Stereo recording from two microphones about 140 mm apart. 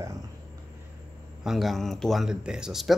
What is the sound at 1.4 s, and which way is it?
A man's voice, centre (ahead or behind).